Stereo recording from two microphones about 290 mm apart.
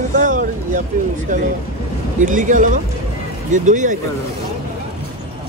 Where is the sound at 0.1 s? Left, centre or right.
Right.